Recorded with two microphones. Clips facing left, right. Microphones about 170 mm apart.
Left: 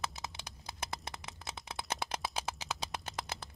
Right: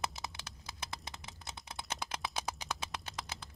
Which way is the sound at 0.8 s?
60° left (ahead or behind).